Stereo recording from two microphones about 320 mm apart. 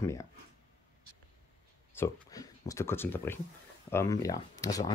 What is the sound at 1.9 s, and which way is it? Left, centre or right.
Speech, centre.